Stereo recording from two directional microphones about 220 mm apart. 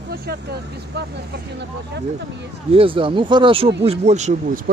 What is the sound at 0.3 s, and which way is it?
Speech, 45° right (ahead or behind).